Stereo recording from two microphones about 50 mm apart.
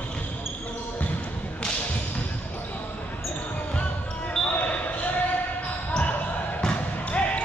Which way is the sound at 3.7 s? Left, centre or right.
Left.